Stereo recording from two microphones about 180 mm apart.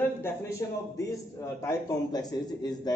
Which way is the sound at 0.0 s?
15° left (ahead or behind).